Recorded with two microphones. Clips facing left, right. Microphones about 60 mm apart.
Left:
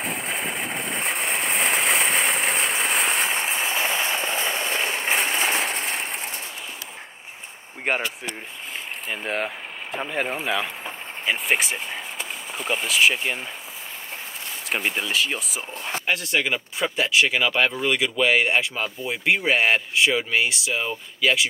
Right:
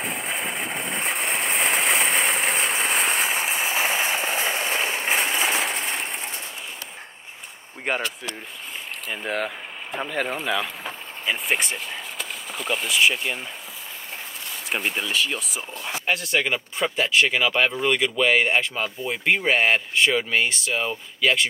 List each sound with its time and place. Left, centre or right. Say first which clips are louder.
0.0 s a sound: even; centre
9.1 s speech: even; centre
14.7 s speech: left 1 dB; centre
15.7 s speech: left 2 dB; left
16.1 s speech: right 1 dB; centre